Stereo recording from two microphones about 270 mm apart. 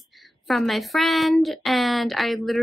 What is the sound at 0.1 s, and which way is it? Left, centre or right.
A woman's voice, centre.